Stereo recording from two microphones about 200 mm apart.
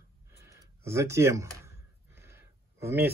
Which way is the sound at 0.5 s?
15° right (ahead or behind).